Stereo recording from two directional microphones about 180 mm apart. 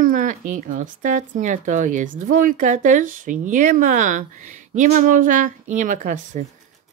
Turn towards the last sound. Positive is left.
turn(degrees=-45)  # may be behind; listen again after turning